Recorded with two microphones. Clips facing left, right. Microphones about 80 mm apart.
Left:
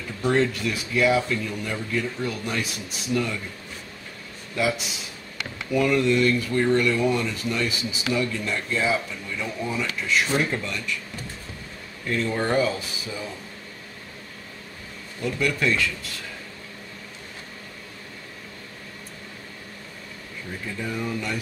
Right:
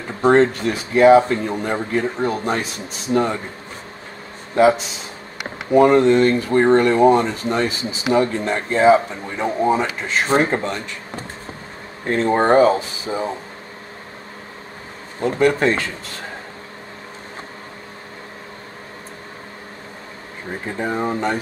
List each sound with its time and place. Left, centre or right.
0.0 s speech: right
4.6 s speech: right
15.1 s speech: right
20.4 s speech: right